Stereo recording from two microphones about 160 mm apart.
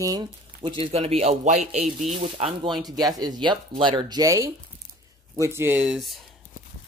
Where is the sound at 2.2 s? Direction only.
35° right (ahead or behind).